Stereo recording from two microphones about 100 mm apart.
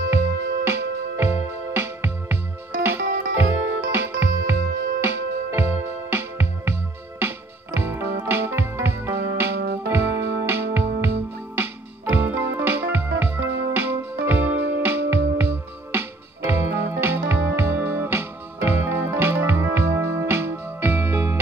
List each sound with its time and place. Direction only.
0.7 s music: 25° right (ahead or behind)